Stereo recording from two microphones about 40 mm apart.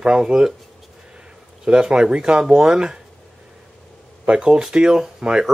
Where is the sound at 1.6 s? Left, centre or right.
Right.